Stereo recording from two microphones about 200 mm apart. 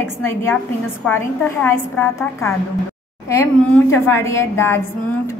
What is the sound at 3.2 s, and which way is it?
A woman's voice, 15° left (ahead or behind).